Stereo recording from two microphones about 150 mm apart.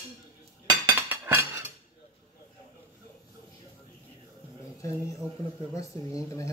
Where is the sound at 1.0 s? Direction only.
15° right (ahead or behind).